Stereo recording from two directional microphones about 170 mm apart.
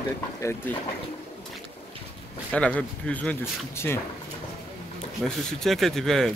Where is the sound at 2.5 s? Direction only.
5° left (ahead or behind).